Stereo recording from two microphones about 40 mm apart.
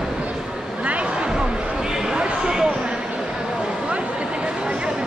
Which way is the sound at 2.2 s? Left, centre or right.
Centre.